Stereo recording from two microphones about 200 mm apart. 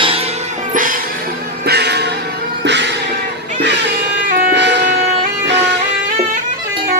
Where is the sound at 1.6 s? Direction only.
55° right (ahead or behind).